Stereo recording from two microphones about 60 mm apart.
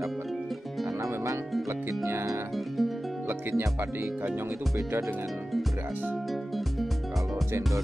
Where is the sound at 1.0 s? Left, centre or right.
Right.